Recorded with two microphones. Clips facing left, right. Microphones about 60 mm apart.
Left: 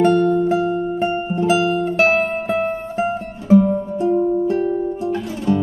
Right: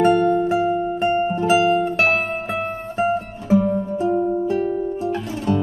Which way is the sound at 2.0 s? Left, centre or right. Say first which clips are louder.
Left 3 dB; centre.